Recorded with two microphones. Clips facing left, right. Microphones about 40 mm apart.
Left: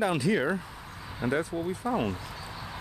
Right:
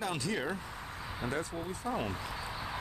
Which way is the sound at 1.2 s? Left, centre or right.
Centre.